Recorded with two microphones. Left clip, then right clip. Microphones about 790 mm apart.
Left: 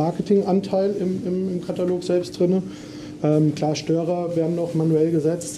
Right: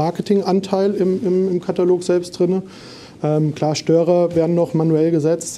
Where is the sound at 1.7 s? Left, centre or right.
Right.